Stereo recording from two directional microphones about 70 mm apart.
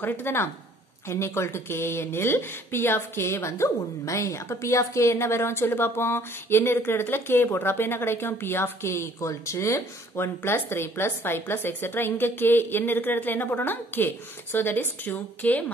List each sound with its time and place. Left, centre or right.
0.0 s speech: left